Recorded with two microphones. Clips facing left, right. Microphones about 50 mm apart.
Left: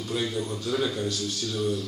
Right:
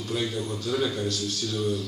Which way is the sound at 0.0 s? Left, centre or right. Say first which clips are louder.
Even; centre.